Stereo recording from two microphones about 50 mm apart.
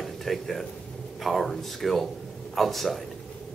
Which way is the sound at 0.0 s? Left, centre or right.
Centre.